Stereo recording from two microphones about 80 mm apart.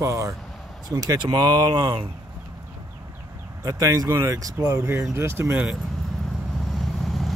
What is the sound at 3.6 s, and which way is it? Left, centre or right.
Speech, right.